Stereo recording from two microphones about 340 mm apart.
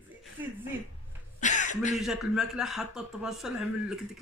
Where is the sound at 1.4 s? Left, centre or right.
Left.